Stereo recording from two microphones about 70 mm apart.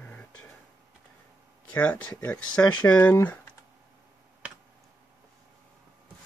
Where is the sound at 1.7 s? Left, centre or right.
Left.